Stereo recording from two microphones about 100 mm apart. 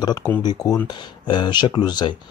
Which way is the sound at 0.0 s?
40° left (ahead or behind).